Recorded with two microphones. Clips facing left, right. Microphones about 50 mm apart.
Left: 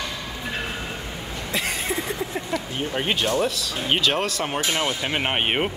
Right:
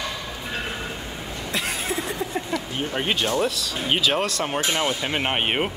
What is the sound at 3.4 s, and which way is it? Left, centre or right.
Speech, centre.